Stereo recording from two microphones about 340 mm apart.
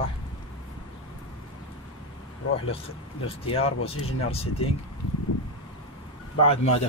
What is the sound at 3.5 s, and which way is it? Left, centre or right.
Speech, centre.